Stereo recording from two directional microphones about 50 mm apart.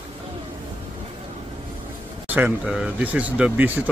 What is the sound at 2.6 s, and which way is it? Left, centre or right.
Speech, centre.